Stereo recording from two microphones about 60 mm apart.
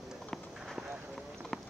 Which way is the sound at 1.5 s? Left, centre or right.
Centre.